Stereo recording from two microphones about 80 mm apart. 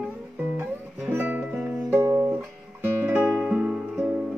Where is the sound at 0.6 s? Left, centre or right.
Right.